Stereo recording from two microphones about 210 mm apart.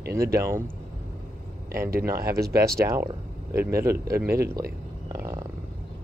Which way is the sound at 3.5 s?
10° right (ahead or behind).